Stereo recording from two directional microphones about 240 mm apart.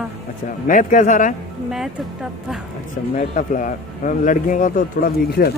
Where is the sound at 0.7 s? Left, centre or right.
Left.